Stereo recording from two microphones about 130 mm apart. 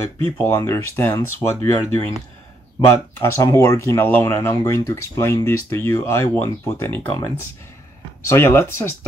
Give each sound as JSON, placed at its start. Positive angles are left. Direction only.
{"t": 0.4, "sound": "speech", "side_deg": 20}
{"t": 3.2, "sound": "speech", "side_deg": 20}
{"t": 7.1, "sound": "speech", "side_deg": 30}
{"t": 8.3, "sound": "speech", "side_deg": 15}